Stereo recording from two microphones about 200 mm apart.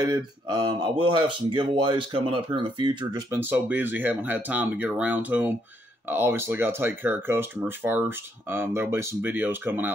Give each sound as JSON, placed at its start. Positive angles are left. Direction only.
{"t": 0.0, "sound": "speech", "side_deg": -20}